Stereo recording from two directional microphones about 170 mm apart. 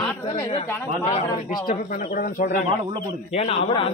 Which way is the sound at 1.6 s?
55° left (ahead or behind).